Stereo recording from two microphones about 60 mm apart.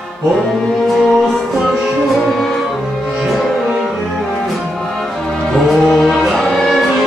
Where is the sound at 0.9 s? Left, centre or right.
Centre.